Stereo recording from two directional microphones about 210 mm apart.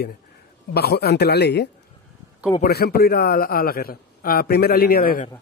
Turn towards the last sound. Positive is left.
turn(degrees=45)  # may be behind; listen again after turning